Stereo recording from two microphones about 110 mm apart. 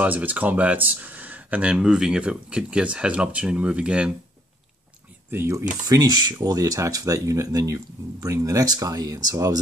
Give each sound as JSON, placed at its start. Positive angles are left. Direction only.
{"t": 0.0, "sound": "speech", "side_deg": -15}
{"t": 5.3, "sound": "speech", "side_deg": -25}
{"t": 5.9, "sound": "speech", "side_deg": -40}